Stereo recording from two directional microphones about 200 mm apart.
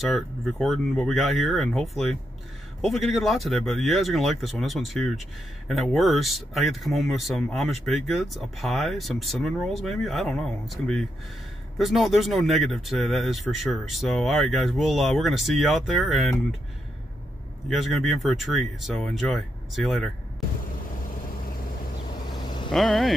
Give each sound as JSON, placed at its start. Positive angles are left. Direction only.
{"t": 0.0, "sound": "speech", "side_deg": 0}
{"t": 17.6, "sound": "speech", "side_deg": 0}
{"t": 22.3, "sound": "vehicle", "side_deg": 20}
{"t": 22.7, "sound": "speech", "side_deg": 0}